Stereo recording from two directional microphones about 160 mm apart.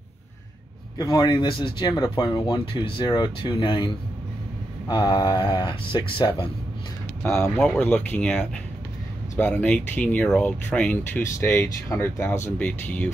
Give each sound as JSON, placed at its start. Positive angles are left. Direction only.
{"t": 0.9, "sound": "speech", "side_deg": 25}
{"t": 7.5, "sound": "speech", "side_deg": 5}